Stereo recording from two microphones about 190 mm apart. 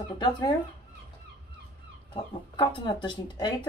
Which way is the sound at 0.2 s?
20° left (ahead or behind).